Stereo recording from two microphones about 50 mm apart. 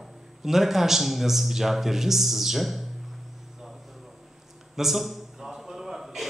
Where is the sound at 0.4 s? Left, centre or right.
Centre.